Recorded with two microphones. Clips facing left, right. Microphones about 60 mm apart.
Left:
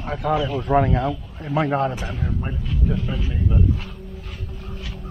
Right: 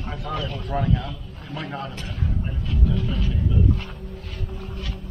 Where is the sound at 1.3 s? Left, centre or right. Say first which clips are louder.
Left 12 dB; centre.